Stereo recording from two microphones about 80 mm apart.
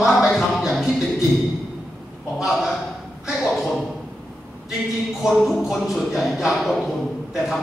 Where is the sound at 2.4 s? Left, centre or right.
Centre.